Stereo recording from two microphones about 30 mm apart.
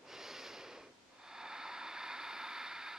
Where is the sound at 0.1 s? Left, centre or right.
Centre.